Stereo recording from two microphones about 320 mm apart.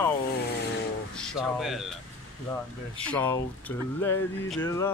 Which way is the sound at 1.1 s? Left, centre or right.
Centre.